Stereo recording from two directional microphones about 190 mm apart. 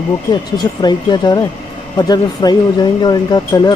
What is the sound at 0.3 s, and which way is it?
Speech, 20° left (ahead or behind).